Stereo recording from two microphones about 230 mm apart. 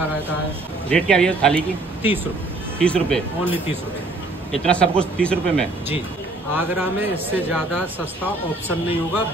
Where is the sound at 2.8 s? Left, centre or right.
Centre.